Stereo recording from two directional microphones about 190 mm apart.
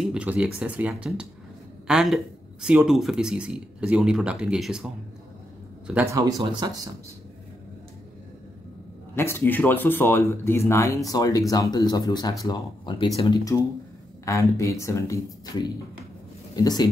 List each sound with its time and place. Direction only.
0.0 s speech: 5° right (ahead or behind)
6.5 s speech: 20° right (ahead or behind)
9.1 s speech: 10° left (ahead or behind)